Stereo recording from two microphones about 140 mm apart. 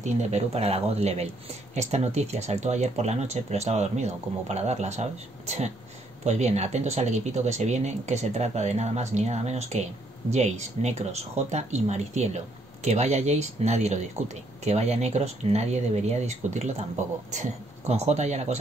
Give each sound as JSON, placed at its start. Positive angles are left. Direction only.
{"t": 0.0, "sound": "speech", "side_deg": -55}
{"t": 6.2, "sound": "speech", "side_deg": -55}